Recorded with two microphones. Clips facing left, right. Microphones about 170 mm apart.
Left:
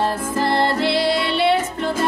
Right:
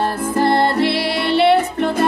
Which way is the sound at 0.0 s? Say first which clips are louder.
Right 3 dB; 60° right (ahead or behind).